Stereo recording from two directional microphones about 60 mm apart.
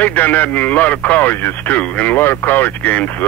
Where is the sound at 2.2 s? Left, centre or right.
Left.